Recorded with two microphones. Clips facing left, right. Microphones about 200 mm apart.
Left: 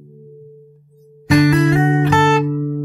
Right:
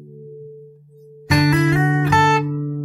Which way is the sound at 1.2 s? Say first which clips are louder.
Left 4 dB; 35° left (ahead or behind).